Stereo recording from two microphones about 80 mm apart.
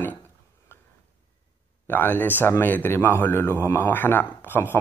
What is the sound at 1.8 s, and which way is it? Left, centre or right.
Speech, left.